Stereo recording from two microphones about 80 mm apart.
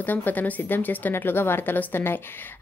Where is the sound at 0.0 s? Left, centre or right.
Left.